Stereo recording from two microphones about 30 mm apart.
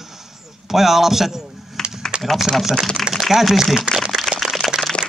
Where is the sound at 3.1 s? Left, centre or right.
Right.